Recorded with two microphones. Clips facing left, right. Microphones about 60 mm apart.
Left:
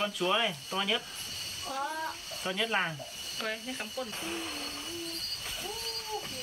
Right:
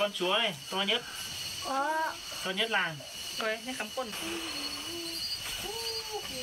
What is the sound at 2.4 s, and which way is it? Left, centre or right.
Speech, centre.